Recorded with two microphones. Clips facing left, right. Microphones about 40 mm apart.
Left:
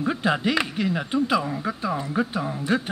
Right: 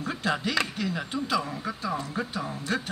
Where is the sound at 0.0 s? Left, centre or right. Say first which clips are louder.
Left 6 dB; centre.